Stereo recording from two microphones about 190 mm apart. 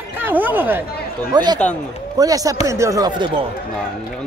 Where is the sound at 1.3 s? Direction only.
20° right (ahead or behind).